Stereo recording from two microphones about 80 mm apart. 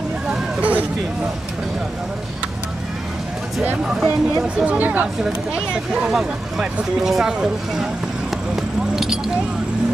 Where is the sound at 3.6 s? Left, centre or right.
Centre.